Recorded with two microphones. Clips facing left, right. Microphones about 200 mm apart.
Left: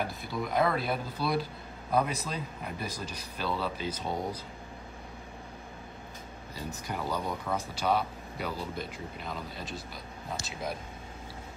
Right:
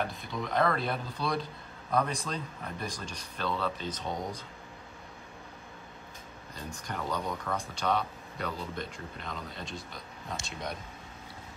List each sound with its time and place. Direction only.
0.0 s speech: 5° left (ahead or behind)
6.7 s speech: 5° left (ahead or behind)